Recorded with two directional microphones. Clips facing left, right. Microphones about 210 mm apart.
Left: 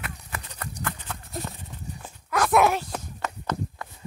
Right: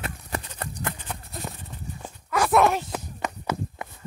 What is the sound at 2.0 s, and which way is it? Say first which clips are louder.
Dog: right 1 dB; 10° right (ahead or behind).